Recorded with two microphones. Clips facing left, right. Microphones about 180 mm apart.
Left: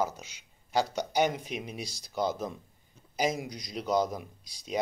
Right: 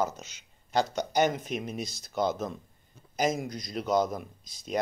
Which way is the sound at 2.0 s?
10° left (ahead or behind).